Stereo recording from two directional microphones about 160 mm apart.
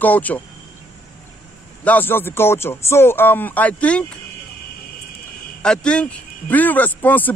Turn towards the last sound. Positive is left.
turn(degrees=10)  # may be behind; listen again after turning